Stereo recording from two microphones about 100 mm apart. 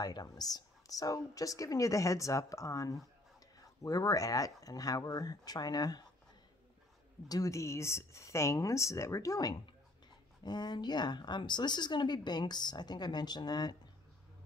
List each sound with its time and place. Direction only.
0.0 s speech: 45° left (ahead or behind)
7.2 s a woman's voice: 35° left (ahead or behind)